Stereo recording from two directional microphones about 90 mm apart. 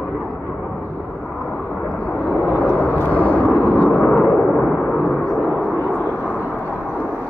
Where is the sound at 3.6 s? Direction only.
15° left (ahead or behind).